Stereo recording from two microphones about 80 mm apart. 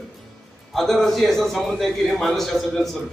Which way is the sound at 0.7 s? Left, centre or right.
Centre.